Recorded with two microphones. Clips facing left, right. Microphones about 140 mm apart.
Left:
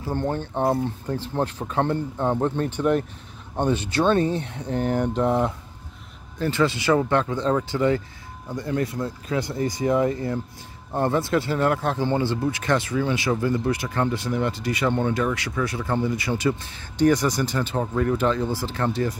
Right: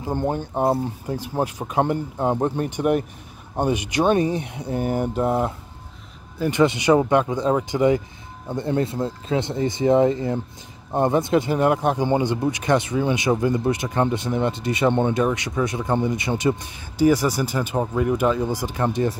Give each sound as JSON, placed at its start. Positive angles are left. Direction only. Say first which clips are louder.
{"t": 0.0, "sound": "speech", "louder": "right 2 dB", "side_deg": -15}
{"t": 16.9, "sound": "speech", "louder": "right 1 dB", "side_deg": -10}